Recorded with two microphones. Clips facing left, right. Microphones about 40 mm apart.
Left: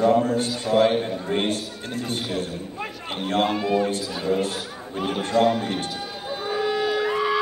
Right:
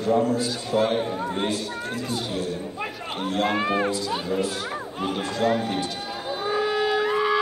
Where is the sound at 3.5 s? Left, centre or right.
Right.